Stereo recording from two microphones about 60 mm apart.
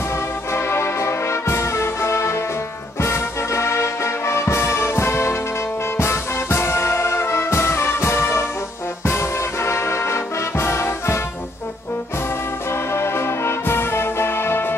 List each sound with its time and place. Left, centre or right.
0.5 s music: left
12.9 s music: left